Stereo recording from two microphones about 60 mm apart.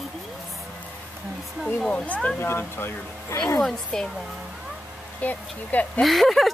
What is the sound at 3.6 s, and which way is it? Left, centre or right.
Speech, centre.